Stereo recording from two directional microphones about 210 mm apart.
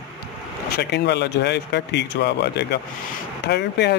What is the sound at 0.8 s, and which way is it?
Speech, 50° left (ahead or behind).